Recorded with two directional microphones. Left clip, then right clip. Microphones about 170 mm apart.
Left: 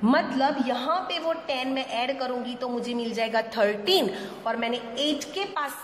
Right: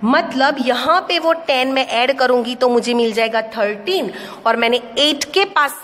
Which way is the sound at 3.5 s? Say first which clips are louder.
Right 4 dB; 15° right (ahead or behind).